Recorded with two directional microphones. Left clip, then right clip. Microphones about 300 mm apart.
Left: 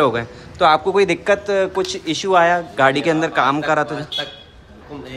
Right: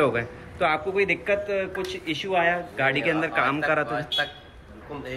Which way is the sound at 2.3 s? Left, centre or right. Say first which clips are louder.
Left 9 dB; left.